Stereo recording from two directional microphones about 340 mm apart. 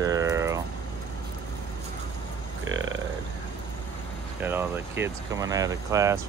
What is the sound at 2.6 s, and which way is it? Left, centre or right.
Burping, right.